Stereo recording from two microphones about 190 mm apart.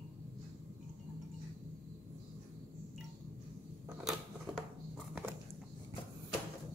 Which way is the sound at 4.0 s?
Centre (ahead or behind).